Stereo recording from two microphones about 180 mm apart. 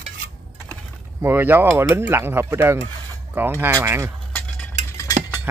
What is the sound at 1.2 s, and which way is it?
Speech, 10° right (ahead or behind).